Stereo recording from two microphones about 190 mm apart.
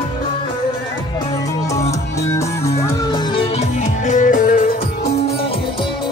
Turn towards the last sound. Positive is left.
turn(degrees=45)  # may be behind; listen again after turning